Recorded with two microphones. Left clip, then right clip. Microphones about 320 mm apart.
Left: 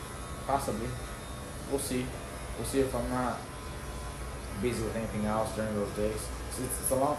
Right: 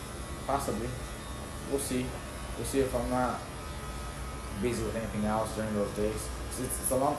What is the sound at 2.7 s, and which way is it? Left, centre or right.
Speech, centre.